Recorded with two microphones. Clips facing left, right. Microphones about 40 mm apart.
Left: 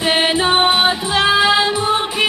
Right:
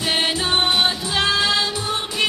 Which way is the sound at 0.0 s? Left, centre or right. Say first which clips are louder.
Left 6 dB; left.